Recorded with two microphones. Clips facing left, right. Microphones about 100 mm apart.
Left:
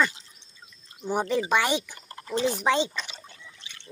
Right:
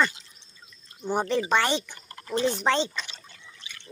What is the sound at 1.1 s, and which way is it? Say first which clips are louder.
Speech: even; 10° left (ahead or behind).